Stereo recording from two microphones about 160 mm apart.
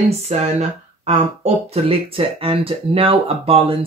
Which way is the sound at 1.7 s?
35° right (ahead or behind).